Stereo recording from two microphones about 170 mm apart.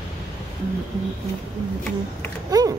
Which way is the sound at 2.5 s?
20° right (ahead or behind).